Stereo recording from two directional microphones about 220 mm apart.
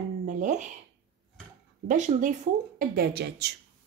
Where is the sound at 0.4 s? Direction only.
35° right (ahead or behind).